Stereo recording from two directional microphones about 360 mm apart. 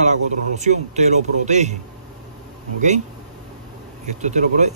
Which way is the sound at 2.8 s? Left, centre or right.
Centre.